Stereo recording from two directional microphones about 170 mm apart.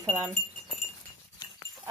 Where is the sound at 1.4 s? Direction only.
25° left (ahead or behind).